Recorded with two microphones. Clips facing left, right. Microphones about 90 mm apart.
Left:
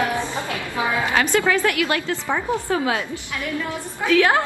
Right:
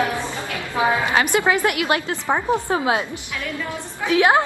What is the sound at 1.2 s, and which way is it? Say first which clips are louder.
A woman's voice: left 2 dB; 20° right (ahead or behind).